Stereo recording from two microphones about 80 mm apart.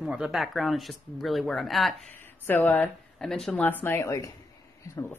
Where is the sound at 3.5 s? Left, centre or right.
Left.